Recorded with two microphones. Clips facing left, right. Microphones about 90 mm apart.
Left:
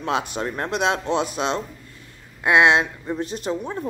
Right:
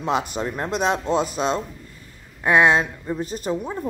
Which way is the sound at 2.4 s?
15° left (ahead or behind).